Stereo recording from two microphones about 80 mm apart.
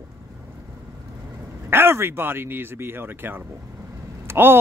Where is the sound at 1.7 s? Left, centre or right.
Right.